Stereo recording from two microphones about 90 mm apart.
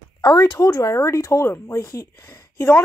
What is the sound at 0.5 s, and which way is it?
Speech, 40° left (ahead or behind).